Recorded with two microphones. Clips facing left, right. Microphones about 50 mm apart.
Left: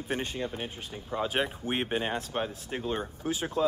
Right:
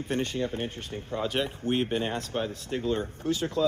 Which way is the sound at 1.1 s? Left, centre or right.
Left.